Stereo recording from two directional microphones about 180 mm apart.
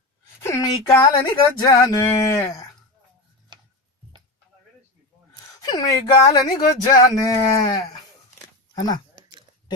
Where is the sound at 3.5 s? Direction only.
25° right (ahead or behind).